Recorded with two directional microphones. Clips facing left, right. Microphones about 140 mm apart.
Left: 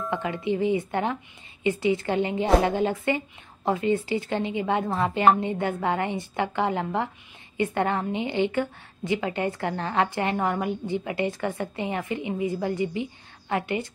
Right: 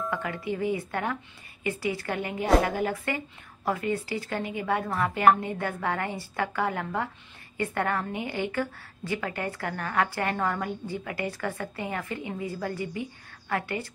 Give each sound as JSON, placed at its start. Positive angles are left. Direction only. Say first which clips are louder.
{"t": 0.1, "sound": "a woman's voice", "louder": "left 4 dB", "side_deg": 20}